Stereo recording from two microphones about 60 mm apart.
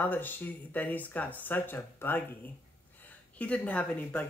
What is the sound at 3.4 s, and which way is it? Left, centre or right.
Speech, left.